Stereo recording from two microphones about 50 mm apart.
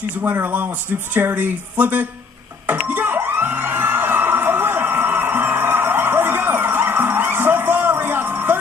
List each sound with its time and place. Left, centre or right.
0.2 s speech: right
2.6 s music: right